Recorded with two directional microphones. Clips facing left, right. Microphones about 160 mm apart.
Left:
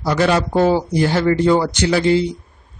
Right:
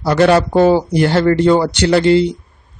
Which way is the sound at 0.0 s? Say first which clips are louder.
Right 5 dB; 65° right (ahead or behind).